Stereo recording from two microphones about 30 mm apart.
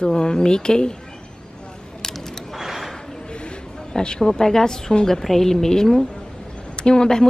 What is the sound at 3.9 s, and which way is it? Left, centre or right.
A woman's voice, left.